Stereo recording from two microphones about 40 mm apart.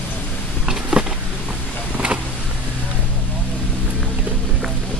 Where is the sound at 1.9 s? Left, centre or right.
Right.